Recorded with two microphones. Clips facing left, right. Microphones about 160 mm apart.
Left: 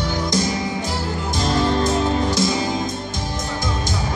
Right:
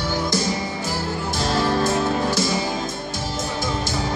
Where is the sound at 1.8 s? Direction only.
15° left (ahead or behind).